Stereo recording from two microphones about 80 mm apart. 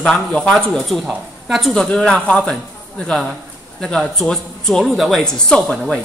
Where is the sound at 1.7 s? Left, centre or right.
Centre.